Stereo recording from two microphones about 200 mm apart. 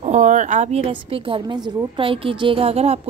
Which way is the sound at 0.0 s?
35° right (ahead or behind).